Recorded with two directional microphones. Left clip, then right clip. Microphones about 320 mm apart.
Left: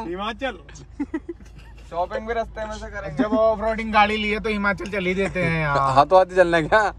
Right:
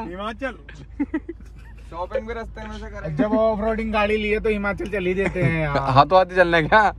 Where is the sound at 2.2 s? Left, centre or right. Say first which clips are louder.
Left 6 dB; centre.